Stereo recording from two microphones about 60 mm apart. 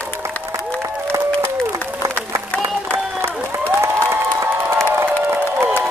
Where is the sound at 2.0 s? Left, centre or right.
Left.